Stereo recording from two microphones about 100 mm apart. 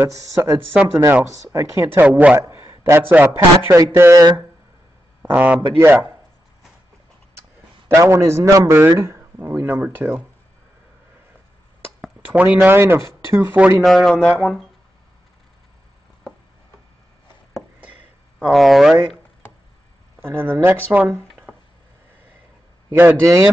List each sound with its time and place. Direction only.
0.0 s speech: 30° right (ahead or behind)
2.0 s speech: 15° right (ahead or behind)
2.3 s a sound: 30° right (ahead or behind)
2.9 s speech: 20° right (ahead or behind)
3.7 s speech: 30° right (ahead or behind)
5.2 s speech: 15° right (ahead or behind)
7.9 s speech: 30° right (ahead or behind)
12.3 s speech: 15° right (ahead or behind)
13.8 s speech: 5° left (ahead or behind)
17.7 s a sound: 10° right (ahead or behind)
18.5 s speech: centre (ahead or behind)
20.2 s speech: 20° right (ahead or behind)
22.8 s speech: 20° right (ahead or behind)